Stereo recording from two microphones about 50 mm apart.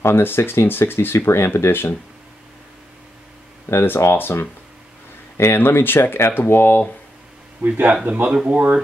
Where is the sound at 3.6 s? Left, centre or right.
Left.